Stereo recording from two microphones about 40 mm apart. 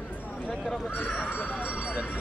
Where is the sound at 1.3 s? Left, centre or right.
Left.